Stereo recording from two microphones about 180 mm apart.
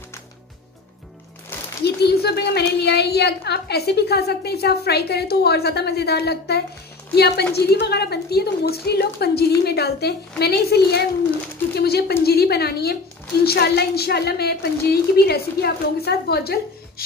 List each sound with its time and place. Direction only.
2.0 s a woman's voice: 65° left (ahead or behind)